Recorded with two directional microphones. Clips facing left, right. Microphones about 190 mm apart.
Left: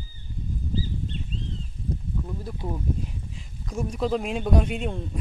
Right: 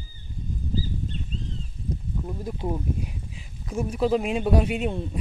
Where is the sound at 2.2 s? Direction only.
20° right (ahead or behind).